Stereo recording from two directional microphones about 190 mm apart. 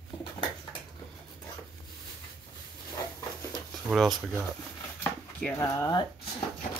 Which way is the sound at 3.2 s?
15° left (ahead or behind).